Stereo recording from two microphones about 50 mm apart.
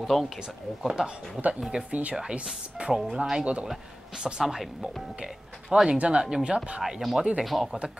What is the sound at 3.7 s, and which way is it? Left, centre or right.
Speech, centre.